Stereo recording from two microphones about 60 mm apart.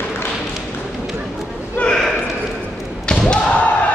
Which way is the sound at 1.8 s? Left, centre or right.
Left.